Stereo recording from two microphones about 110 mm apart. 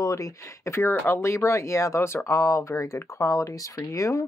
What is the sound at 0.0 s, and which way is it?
Speech, 30° left (ahead or behind).